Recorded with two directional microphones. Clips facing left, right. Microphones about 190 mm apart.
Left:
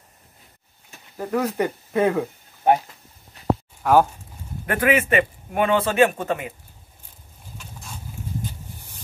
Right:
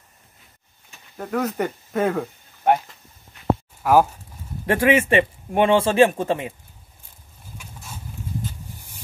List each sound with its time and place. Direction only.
1.1 s speech: 5° left (ahead or behind)
3.4 s a sound: 35° left (ahead or behind)
3.8 s speech: 5° right (ahead or behind)
4.6 s speech: 25° right (ahead or behind)